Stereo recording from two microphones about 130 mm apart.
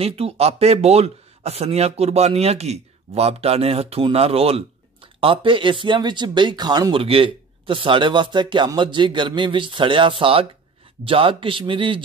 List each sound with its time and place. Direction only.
0.0 s speech: 50° right (ahead or behind); by 7.0 s 35° right (ahead or behind)
7.0 s speech: 45° right (ahead or behind)